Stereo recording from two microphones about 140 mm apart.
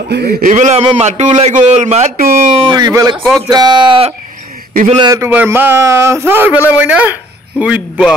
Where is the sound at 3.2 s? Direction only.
Centre (ahead or behind).